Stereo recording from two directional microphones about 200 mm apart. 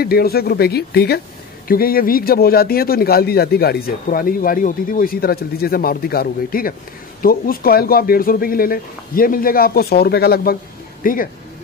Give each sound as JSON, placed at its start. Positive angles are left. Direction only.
{"t": 0.0, "sound": "speech", "side_deg": 50}